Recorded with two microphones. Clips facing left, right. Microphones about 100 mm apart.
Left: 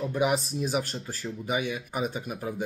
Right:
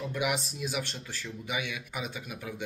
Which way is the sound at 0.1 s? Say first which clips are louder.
Left 6 dB; 35° left (ahead or behind).